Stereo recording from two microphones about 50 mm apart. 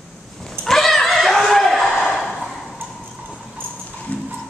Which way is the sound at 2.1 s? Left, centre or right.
Centre.